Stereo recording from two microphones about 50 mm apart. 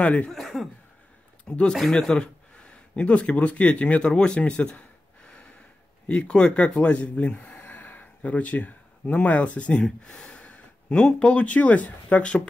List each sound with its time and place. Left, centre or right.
0.0 s speech: left
0.3 s speech: centre
1.5 s speech: left
1.8 s a man's voice: centre
2.6 s speech: left
6.0 s speech: left
9.8 s gasp: centre
11.1 s speech: left